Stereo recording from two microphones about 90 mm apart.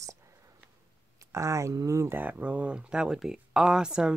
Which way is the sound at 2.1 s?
20° right (ahead or behind).